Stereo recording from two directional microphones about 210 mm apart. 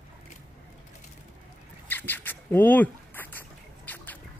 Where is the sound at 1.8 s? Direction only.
10° left (ahead or behind).